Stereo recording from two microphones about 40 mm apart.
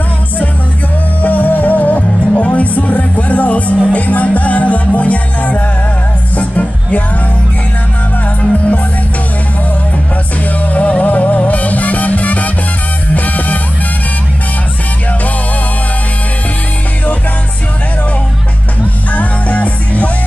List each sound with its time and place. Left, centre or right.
1.2 s music: left
8.4 s music: left
10.6 s music: left
19.1 s music: left